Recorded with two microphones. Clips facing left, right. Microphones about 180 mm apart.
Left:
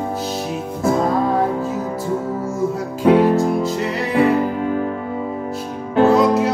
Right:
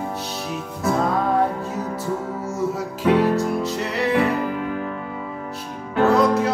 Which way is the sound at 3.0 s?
35° left (ahead or behind).